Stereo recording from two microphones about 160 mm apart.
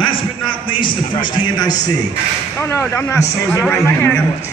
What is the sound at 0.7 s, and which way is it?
A man's voice, 30° left (ahead or behind).